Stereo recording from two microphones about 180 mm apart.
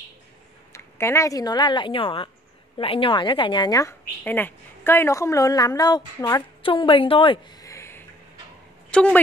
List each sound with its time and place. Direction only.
0.7 s a woman's voice: 15° left (ahead or behind)
7.7 s a sound: 15° left (ahead or behind)
8.9 s a woman's voice: 5° left (ahead or behind)